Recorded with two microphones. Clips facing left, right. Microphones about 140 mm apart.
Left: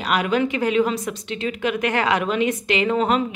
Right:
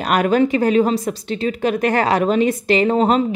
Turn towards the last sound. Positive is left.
turn(degrees=-35)  # may be behind; listen again after turning